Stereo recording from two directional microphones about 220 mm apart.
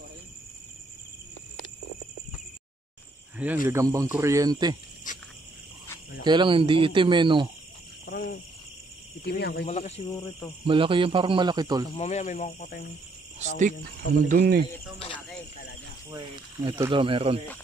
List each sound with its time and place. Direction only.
3.6 s speech: 15° right (ahead or behind)
5.1 s wild animals: 35° left (ahead or behind)
6.2 s speech: 20° right (ahead or behind)
8.1 s cricket: 45° left (ahead or behind)
9.2 s speech: 50° left (ahead or behind)
9.7 s speech: 30° left (ahead or behind)
10.7 s speech: 25° right (ahead or behind)
12.0 s speech: 30° left (ahead or behind)
13.6 s speech: 40° right (ahead or behind)
16.1 s speech: 20° right (ahead or behind)